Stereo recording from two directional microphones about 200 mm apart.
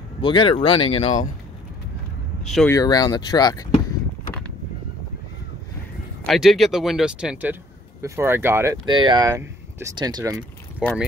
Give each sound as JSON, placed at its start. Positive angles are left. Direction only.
{"t": 0.2, "sound": "speech", "side_deg": 25}
{"t": 2.4, "sound": "speech", "side_deg": 0}
{"t": 2.7, "sound": "speech", "side_deg": 20}
{"t": 6.2, "sound": "speech", "side_deg": 0}
{"t": 8.8, "sound": "speech", "side_deg": -25}
{"t": 10.8, "sound": "speech", "side_deg": -5}